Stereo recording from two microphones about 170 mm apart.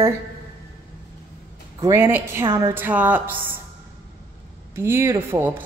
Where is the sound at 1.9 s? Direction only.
15° right (ahead or behind).